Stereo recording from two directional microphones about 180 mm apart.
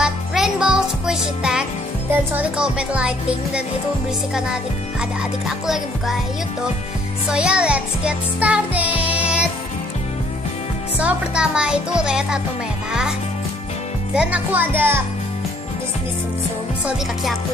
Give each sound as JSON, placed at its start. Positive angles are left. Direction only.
{"t": 0.0, "sound": "music", "side_deg": -5}
{"t": 7.2, "sound": "music", "side_deg": -5}
{"t": 11.0, "sound": "speech", "side_deg": -5}
{"t": 14.1, "sound": "music", "side_deg": -5}
{"t": 16.8, "sound": "speech", "side_deg": 0}